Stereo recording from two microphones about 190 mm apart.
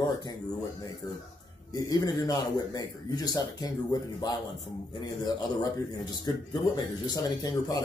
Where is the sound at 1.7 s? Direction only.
20° left (ahead or behind).